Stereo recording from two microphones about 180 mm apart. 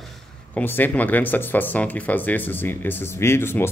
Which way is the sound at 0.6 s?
10° left (ahead or behind).